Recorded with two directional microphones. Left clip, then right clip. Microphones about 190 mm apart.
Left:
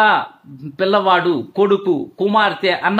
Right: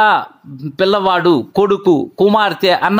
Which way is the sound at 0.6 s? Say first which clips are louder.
Right 2 dB; 20° right (ahead or behind).